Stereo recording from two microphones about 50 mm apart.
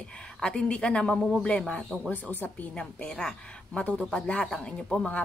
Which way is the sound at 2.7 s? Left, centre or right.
Centre.